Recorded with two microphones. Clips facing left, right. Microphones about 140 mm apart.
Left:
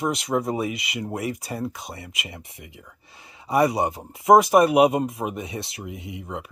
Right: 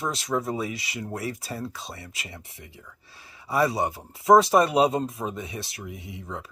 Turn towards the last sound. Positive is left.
turn(degrees=20)  # may be behind; listen again after turning